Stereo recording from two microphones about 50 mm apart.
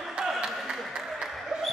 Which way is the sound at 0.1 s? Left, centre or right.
Centre.